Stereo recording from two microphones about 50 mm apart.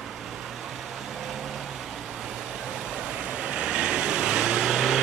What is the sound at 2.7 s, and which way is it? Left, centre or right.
Vehicle, centre.